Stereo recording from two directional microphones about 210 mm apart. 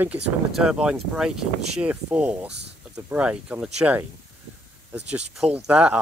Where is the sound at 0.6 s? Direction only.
5° right (ahead or behind).